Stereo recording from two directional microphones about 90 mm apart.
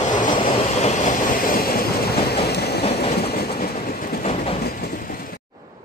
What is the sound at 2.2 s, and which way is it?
Train, 90° left.